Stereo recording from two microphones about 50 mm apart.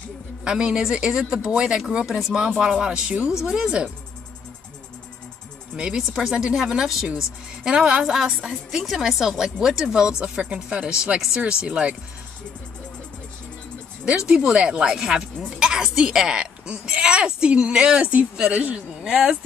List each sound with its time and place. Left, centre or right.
0.4 s speech: centre
3.3 s speech: centre
5.8 s a woman's voice: centre
14.0 s a woman's voice: centre
19.0 s speech: centre